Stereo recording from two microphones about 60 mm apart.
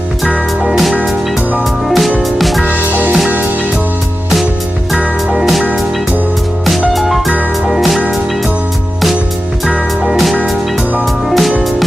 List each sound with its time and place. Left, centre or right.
0.2 s music: centre
2.6 s music: right
4.9 s music: centre
6.9 s music: centre
9.7 s music: centre